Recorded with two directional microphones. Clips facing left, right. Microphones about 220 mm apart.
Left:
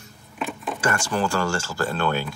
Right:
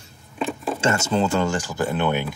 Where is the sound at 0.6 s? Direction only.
25° right (ahead or behind).